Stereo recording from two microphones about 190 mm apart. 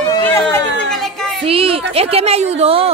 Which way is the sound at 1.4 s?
30° right (ahead or behind).